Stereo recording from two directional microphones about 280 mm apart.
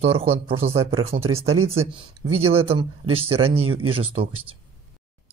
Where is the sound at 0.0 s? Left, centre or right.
Right.